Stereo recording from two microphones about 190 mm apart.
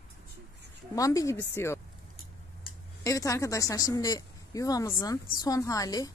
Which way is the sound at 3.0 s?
20° left (ahead or behind).